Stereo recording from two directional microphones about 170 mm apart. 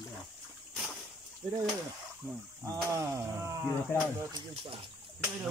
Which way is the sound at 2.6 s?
20° right (ahead or behind).